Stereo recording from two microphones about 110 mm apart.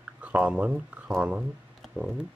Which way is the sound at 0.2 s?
10° right (ahead or behind).